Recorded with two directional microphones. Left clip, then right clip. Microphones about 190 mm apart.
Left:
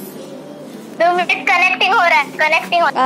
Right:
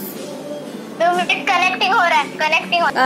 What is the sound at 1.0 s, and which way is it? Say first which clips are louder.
A woman's voice: left 2 dB; 10° left (ahead or behind).